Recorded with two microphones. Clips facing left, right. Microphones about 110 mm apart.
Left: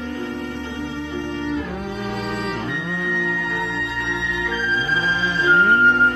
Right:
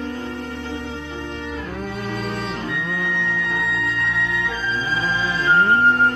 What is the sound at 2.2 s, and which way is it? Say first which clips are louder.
Music: left 1 dB; 25° left (ahead or behind).